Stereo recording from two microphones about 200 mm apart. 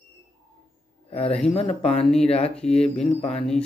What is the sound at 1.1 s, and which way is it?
A man's voice, 30° left (ahead or behind).